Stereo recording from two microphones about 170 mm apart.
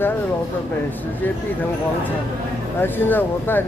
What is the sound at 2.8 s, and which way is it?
Speech, 10° left (ahead or behind).